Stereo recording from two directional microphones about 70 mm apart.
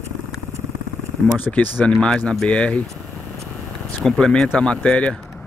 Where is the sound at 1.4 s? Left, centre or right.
Left.